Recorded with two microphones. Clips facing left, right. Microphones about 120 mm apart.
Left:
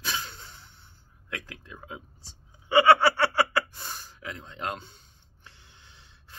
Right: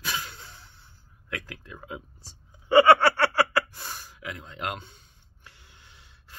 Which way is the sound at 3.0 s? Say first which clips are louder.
Right 1 dB; 15° left (ahead or behind).